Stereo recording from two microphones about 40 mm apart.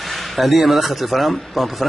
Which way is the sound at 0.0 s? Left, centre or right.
Centre.